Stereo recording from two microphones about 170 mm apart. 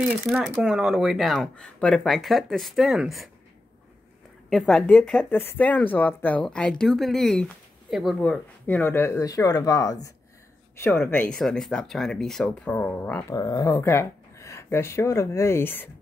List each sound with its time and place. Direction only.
0.0 s speech: centre (ahead or behind)
4.5 s speech: centre (ahead or behind)
13.4 s speech: 20° left (ahead or behind)